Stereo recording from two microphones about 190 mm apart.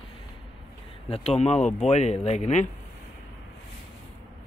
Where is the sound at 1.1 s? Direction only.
35° left (ahead or behind).